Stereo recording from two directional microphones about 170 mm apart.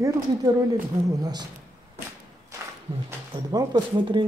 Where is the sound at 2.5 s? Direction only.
20° right (ahead or behind).